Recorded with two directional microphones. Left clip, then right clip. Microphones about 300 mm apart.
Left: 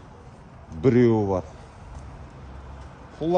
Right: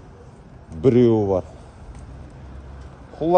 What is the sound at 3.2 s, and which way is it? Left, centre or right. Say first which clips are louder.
Speech: right 6 dB; centre.